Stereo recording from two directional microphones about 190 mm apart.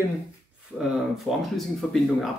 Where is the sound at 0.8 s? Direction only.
Centre (ahead or behind).